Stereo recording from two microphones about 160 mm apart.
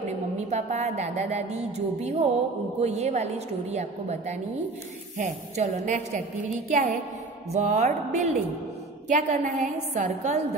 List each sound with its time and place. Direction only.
0.4 s a woman's voice: 45° right (ahead or behind)